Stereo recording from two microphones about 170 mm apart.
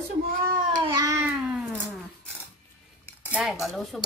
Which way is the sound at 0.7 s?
20° right (ahead or behind).